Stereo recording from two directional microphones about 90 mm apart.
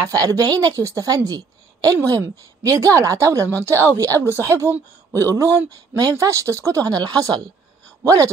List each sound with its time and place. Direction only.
0.0 s a woman's voice: 40° right (ahead or behind)